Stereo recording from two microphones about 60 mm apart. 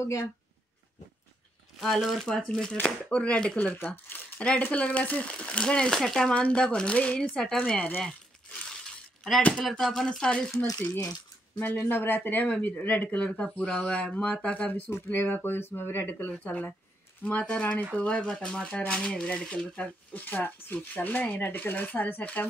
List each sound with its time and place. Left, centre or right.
0.0 s speech: left
1.8 s speech: centre
3.7 s speech: left
4.4 s speech: left; by 7.8 s centre
9.7 s speech: centre
10.7 s speech: left
11.6 s speech: left
15.0 s speech: left